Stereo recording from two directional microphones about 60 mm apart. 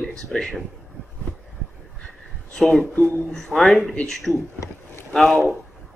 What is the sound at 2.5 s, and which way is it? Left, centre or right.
Speech, centre.